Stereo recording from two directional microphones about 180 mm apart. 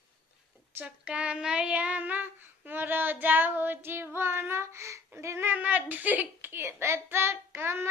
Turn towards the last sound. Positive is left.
turn(degrees=-15)  # may be behind; listen again after turning